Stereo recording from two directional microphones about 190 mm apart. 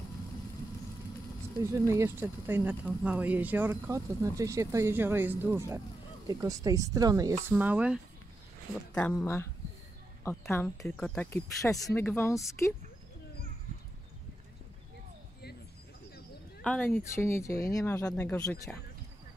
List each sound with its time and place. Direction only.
1.6 s speech: 15° right (ahead or behind)
8.9 s speech: 5° left (ahead or behind)
10.8 s speech: 5° left (ahead or behind)
16.6 s speech: 5° left (ahead or behind)